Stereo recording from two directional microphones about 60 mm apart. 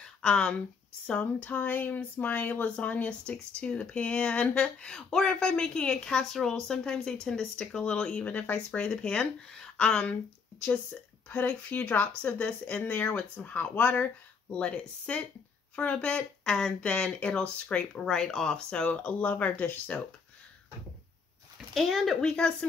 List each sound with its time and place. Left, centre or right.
0.0 s speech: centre
11.2 s a woman's voice: left
17.9 s speech: centre; by 20.1 s left
21.7 s speech: centre
22.3 s speech: centre